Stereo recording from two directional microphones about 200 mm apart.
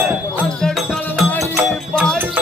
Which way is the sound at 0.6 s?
5° left (ahead or behind).